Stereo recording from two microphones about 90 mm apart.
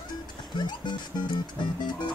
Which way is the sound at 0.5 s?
55° left (ahead or behind).